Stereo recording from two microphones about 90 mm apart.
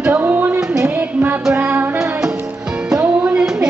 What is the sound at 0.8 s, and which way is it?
Music, 20° right (ahead or behind).